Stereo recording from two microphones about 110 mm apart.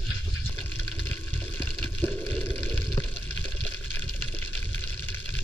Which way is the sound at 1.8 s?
15° left (ahead or behind).